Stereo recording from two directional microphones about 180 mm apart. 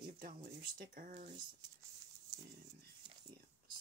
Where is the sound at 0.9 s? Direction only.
50° right (ahead or behind).